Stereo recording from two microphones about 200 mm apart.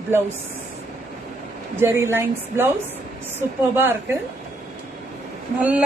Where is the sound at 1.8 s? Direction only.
10° right (ahead or behind).